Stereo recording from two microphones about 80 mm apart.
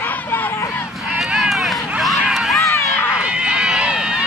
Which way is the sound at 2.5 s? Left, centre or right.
Left.